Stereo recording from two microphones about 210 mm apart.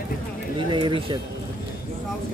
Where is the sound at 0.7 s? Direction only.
25° right (ahead or behind).